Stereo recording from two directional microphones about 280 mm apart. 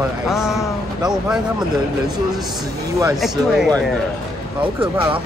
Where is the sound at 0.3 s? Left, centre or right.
Centre.